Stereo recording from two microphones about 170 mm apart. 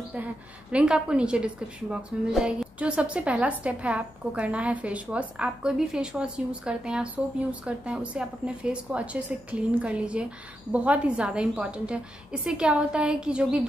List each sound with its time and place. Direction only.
0.1 s a woman's voice: 5° right (ahead or behind)